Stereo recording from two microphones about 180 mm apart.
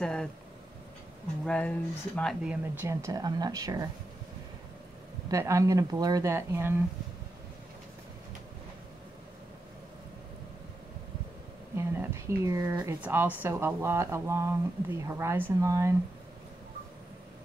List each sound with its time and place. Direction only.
0.0 s speech: 5° left (ahead or behind)
1.4 s speech: 5° left (ahead or behind)
2.4 s speech: 10° right (ahead or behind)
5.3 s speech: 15° right (ahead or behind)
11.7 s speech: 15° right (ahead or behind)